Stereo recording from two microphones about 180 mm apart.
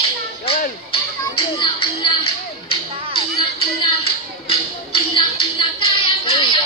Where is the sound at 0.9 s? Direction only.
30° left (ahead or behind).